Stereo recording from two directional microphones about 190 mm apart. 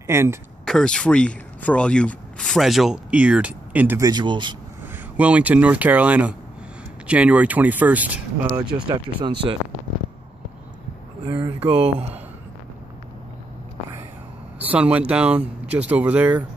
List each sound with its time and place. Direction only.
0.0 s speech: 15° right (ahead or behind)
0.7 s speech: 5° left (ahead or behind)
4.1 s speech: 25° right (ahead or behind)
5.1 s speech: 5° right (ahead or behind)
8.8 s speech: 25° right (ahead or behind)
11.2 s speech: 25° right (ahead or behind)
11.6 s speech: 5° right (ahead or behind)
14.6 s speech: 5° right (ahead or behind)